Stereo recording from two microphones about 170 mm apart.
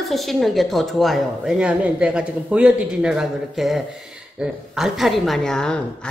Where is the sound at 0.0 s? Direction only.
Centre (ahead or behind).